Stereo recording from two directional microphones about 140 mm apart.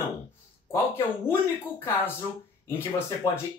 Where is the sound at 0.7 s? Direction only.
20° left (ahead or behind).